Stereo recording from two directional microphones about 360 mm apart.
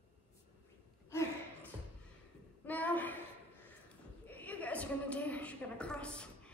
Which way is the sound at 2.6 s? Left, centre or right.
Centre.